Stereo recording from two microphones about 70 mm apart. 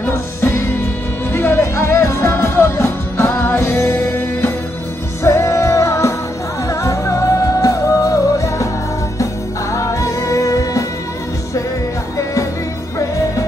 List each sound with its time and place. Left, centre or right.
0.1 s music: left
5.2 s music: left